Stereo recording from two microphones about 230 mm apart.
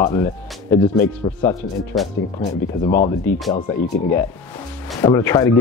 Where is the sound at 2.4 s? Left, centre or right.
Left.